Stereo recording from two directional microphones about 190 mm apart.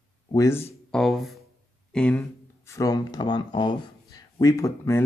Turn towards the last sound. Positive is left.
turn(degrees=15)  # may be behind; listen again after turning